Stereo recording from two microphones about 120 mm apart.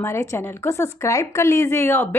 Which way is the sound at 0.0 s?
25° left (ahead or behind).